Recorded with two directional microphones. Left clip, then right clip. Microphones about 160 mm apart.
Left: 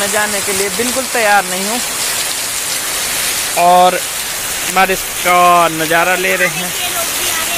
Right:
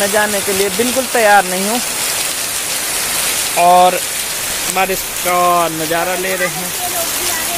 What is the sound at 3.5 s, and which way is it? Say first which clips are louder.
Speech: even; 5° left (ahead or behind).